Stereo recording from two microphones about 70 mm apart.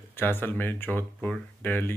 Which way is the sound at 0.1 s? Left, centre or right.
Left.